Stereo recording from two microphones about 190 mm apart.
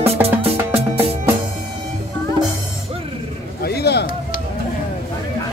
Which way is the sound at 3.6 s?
60° left (ahead or behind).